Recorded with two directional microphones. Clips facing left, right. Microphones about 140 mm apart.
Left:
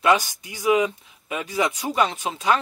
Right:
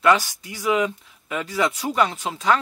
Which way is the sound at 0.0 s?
20° left (ahead or behind).